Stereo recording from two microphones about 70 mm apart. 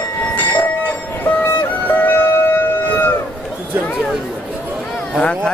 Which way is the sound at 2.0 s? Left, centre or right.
Left.